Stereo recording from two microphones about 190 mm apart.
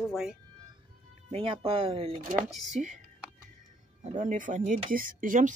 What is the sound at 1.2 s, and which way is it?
Speech, 30° right (ahead or behind).